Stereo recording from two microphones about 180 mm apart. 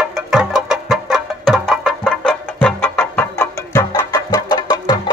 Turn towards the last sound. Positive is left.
turn(degrees=25)  # may be behind; listen again after turning